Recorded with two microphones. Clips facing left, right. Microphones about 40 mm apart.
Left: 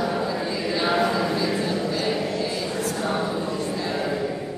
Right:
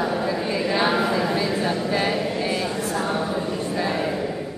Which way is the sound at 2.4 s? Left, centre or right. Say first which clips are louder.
Right 2 dB; right.